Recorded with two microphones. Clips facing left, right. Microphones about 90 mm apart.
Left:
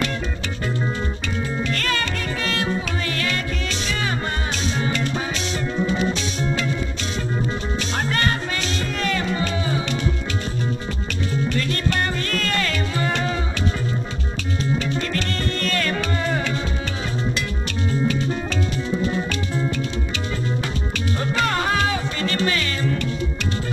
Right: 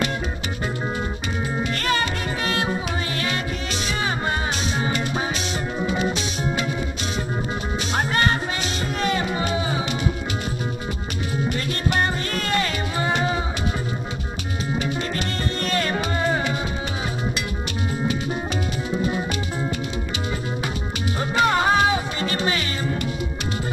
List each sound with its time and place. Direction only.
1.6 s music: 25° right (ahead or behind)
4.8 s music: 15° right (ahead or behind)
8.1 s music: 25° right (ahead or behind)
11.4 s music: 20° right (ahead or behind)
14.8 s music: 20° right (ahead or behind)
19.0 s music: 15° right (ahead or behind)
21.2 s music: 20° right (ahead or behind)